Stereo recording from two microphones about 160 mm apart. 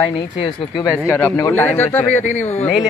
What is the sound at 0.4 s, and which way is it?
Speech, 30° left (ahead or behind).